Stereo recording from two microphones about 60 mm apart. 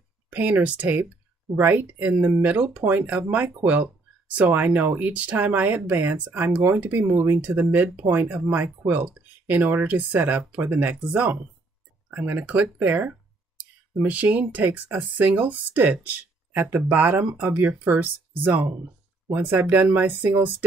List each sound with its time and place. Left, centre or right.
0.3 s speech: right
7.1 s speech: right
7.7 s speech: right